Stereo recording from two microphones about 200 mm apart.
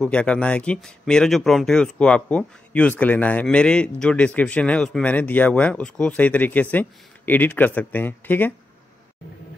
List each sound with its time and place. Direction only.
0.0 s speech: 5° left (ahead or behind)